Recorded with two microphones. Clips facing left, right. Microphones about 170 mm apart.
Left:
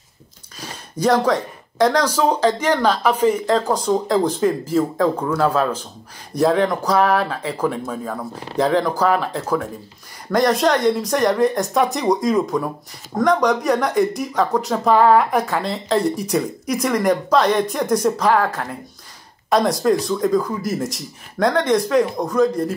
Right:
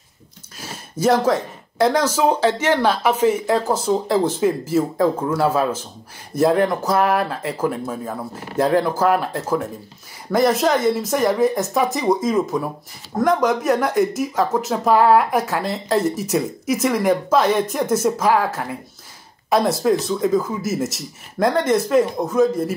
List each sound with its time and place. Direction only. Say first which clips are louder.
1.0 s speech: even; 5° right (ahead or behind)